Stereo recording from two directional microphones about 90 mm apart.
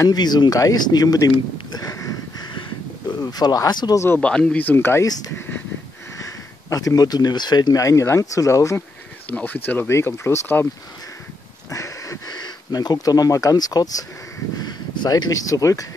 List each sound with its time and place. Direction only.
0.0 s speech: 50° left (ahead or behind)
1.3 s a sound: 50° left (ahead or behind)
3.1 s speech: 45° left (ahead or behind)
4.2 s speech: 10° left (ahead or behind)
6.1 s speech: 40° left (ahead or behind)
9.3 s speech: 15° left (ahead or behind)
11.7 s a sound: 35° left (ahead or behind)
12.3 s speech: 50° left (ahead or behind)